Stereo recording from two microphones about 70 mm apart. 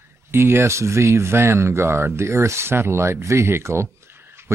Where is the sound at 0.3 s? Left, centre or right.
Right.